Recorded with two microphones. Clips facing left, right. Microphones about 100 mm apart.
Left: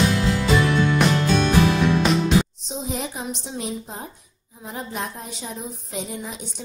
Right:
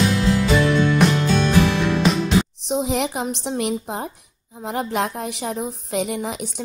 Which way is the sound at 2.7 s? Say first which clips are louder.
Right 12 dB; 75° right (ahead or behind).